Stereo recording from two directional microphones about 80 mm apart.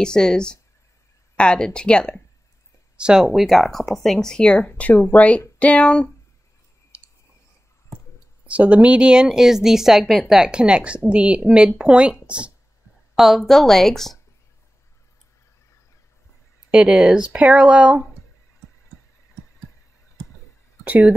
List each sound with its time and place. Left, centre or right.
0.0 s speech: centre
3.0 s speech: centre
3.3 s speech: centre
6.9 s a sound: right
8.5 s speech: centre
16.7 s speech: centre
20.8 s speech: centre